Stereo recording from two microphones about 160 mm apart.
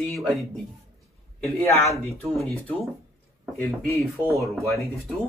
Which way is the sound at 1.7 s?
Centre (ahead or behind).